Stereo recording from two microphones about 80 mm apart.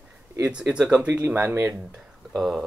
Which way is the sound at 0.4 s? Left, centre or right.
Centre.